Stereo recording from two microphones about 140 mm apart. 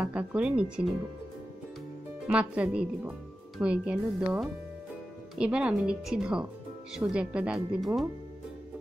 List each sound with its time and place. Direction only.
0.0 s a woman's voice: 10° right (ahead or behind)
2.2 s a woman's voice: 10° right (ahead or behind)